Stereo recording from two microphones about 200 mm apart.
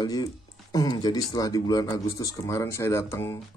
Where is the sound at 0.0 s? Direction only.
20° left (ahead or behind).